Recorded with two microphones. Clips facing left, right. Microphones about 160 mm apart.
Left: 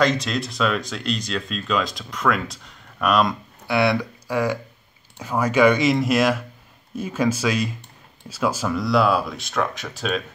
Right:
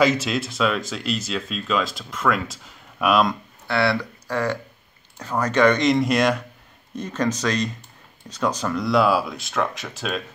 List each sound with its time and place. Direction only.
0.0 s speech: 5° right (ahead or behind)
3.6 s speech: 15° left (ahead or behind); by 10.2 s centre (ahead or behind)